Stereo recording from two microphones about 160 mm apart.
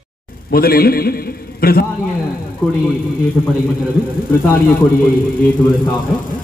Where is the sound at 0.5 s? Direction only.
70° left (ahead or behind).